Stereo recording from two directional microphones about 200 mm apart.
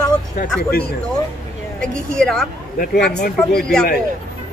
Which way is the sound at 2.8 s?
55° left (ahead or behind).